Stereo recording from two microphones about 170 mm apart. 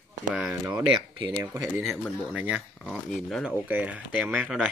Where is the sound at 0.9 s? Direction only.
30° right (ahead or behind).